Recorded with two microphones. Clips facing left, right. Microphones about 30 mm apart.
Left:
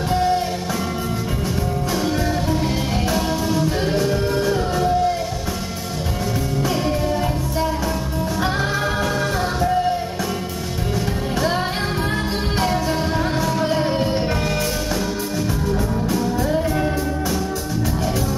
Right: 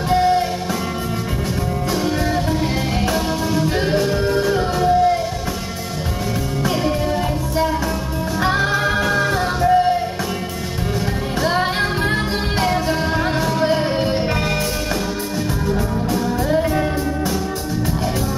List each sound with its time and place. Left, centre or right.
0.1 s music: right
3.6 s music: right
4.3 s music: centre
6.7 s music: centre
13.7 s music: centre
15.7 s music: centre